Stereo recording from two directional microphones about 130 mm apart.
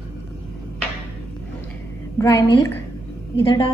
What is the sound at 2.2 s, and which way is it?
Speech, 20° left (ahead or behind).